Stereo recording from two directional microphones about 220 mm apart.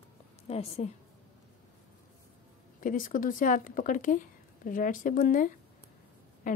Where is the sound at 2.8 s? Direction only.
35° left (ahead or behind).